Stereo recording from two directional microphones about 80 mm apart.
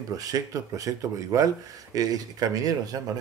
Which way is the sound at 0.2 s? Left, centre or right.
Right.